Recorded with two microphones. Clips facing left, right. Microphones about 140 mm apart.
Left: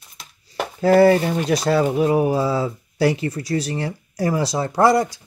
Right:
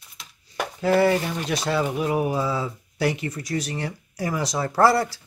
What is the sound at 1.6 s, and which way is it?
Speech, 40° left (ahead or behind).